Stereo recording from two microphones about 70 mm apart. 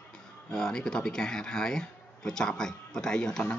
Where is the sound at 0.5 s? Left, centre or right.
Centre.